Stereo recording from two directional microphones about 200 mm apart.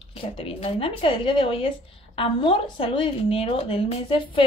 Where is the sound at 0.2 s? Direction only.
30° left (ahead or behind).